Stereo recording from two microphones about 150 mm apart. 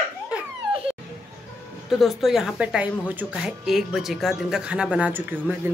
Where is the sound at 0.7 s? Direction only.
40° right (ahead or behind).